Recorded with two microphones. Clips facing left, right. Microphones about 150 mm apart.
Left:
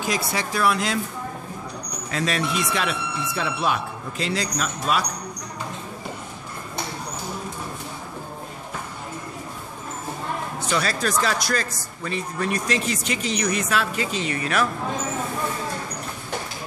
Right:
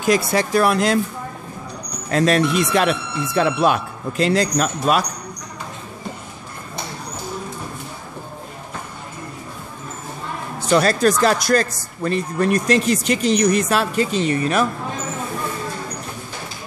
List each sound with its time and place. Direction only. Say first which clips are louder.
0.0 s speech: right 8 dB; 50° right (ahead or behind)
2.0 s speech: right 9 dB; 50° right (ahead or behind)
10.7 s speech: right 9 dB; 45° right (ahead or behind)